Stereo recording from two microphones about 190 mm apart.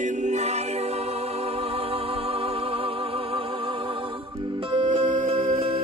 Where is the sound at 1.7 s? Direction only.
30° right (ahead or behind).